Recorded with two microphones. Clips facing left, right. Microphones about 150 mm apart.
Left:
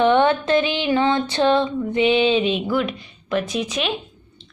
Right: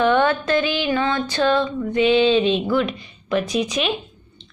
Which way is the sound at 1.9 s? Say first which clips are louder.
Right 2 dB; 20° left (ahead or behind).